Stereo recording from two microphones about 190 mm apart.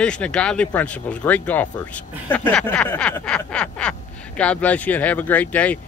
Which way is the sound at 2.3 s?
5° left (ahead or behind).